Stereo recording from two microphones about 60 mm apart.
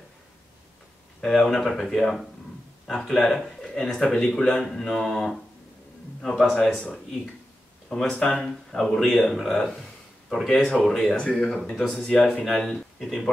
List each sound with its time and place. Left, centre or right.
1.2 s speech: centre
7.9 s speech: centre
12.4 s speech: centre